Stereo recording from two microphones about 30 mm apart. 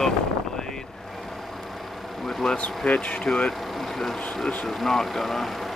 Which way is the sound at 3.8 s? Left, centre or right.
Centre.